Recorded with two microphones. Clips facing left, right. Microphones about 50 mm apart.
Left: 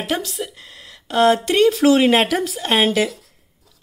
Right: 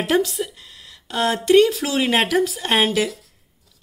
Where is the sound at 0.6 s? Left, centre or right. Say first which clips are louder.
Left 3 dB; left.